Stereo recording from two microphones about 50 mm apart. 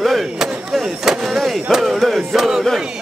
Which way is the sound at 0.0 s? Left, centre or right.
Centre.